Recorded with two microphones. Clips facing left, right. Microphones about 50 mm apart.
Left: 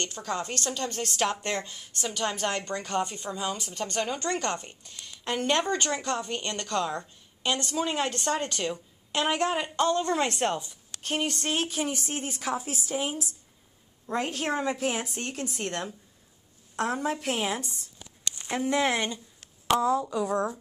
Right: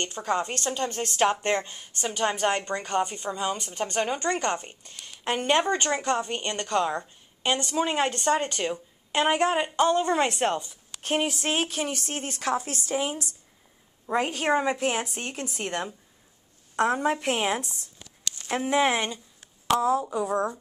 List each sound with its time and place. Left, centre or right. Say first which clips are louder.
0.0 s a woman's voice: right 4 dB; right; by 3.7 s centre
3.7 s speech: right 3 dB; centre
11.0 s speech: right 4 dB; right
11.2 s a woman's voice: right 2 dB; centre
18.0 s a sound: right 1 dB; left
18.7 s speech: right 3 dB; centre
19.8 s speech: right 1 dB; right